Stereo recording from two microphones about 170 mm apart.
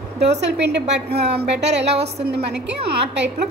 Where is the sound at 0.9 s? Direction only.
70° right (ahead or behind).